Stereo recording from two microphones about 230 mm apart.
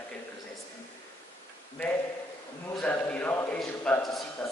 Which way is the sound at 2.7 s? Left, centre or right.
Centre.